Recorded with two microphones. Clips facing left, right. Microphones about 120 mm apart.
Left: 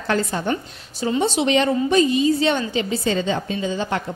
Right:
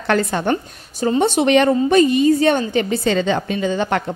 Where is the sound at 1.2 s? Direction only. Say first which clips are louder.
Right 4 dB; 60° right (ahead or behind).